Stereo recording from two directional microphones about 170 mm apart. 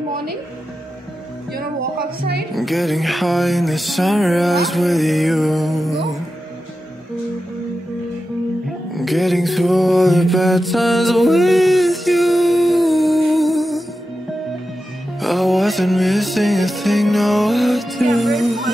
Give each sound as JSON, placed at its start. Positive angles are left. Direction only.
{"t": 1.5, "sound": "a woman's voice", "side_deg": -60}
{"t": 2.5, "sound": "music", "side_deg": 0}
{"t": 8.9, "sound": "mantra", "side_deg": 0}
{"t": 15.1, "sound": "music", "side_deg": 0}